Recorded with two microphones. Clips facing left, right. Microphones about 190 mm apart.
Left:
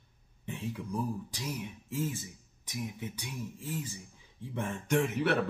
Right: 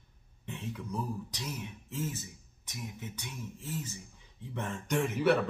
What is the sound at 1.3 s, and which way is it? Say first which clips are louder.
Speech: left 2 dB; 10° left (ahead or behind).